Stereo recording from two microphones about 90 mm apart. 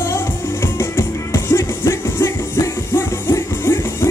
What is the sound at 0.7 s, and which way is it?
Music, 30° left (ahead or behind).